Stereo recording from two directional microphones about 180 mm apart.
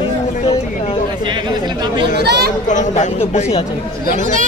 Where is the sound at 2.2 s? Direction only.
65° right (ahead or behind).